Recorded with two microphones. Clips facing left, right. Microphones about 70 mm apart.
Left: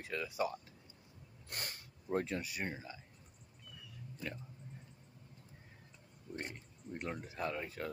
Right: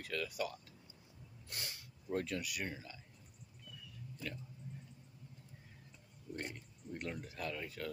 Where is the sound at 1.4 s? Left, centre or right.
Left.